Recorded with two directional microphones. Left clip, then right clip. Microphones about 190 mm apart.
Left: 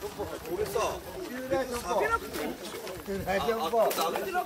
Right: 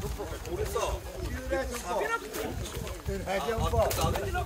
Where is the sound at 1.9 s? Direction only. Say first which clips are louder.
Left 3 dB; 5° left (ahead or behind).